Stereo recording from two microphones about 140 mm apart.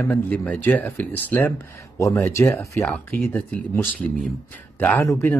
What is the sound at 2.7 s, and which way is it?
Speech, 5° left (ahead or behind).